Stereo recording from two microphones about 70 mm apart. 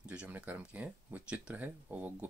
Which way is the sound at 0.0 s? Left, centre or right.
Centre.